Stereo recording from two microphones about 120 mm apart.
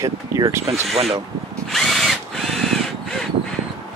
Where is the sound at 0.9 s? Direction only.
55° right (ahead or behind).